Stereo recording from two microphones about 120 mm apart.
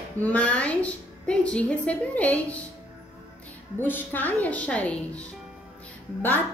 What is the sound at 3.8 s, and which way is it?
A woman's voice, 15° left (ahead or behind).